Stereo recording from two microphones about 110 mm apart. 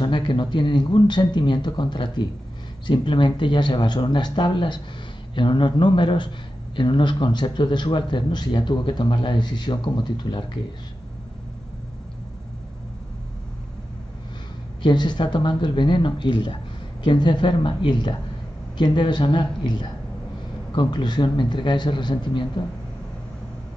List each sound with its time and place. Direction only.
0.0 s speech: 45° left (ahead or behind)
14.8 s speech: 40° left (ahead or behind)